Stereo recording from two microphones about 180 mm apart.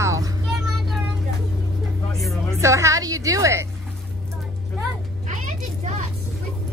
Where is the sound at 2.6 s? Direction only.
15° right (ahead or behind).